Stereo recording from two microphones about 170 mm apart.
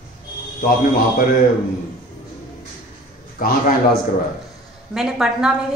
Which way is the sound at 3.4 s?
55° left (ahead or behind).